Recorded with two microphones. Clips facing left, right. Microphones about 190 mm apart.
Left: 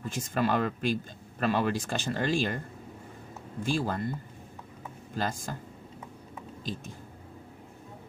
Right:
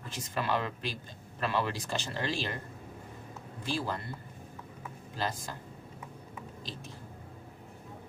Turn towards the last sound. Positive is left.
turn(degrees=50)  # may be behind; listen again after turning